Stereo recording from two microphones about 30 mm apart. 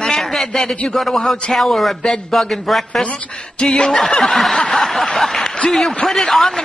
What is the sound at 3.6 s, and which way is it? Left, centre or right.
Snicker, left.